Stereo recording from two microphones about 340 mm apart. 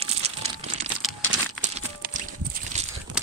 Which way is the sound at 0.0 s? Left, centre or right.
Centre.